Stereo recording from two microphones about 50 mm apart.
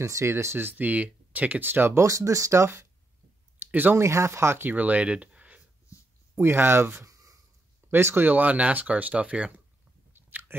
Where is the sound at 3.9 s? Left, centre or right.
Right.